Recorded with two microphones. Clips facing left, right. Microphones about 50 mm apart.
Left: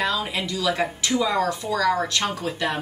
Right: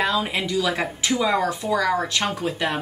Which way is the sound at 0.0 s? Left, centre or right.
Centre.